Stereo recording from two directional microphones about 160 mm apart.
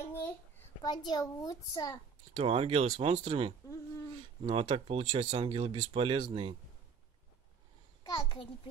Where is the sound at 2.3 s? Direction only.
40° right (ahead or behind).